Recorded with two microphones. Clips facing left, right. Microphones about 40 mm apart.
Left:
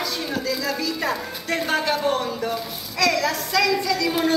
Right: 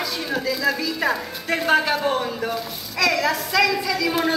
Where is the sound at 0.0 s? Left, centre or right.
Centre.